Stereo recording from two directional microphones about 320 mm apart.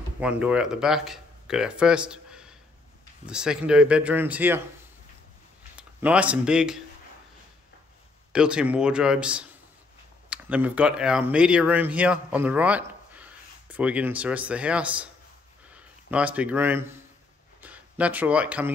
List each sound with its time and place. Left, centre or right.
0.2 s speech: centre
5.8 s speech: centre
8.3 s speech: centre